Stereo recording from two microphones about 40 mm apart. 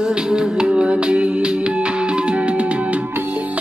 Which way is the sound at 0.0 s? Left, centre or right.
Centre.